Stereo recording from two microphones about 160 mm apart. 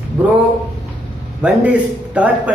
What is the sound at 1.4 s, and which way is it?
A woman's voice, 10° right (ahead or behind).